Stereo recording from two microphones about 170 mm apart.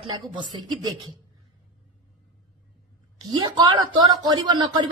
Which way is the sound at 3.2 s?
20° right (ahead or behind).